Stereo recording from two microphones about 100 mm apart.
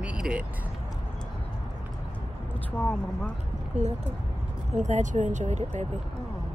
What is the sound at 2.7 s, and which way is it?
Speech, 10° left (ahead or behind).